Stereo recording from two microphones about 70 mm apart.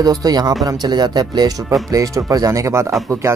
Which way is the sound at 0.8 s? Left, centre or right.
Right.